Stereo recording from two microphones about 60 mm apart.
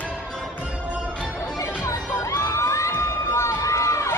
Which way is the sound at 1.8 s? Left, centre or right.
Left.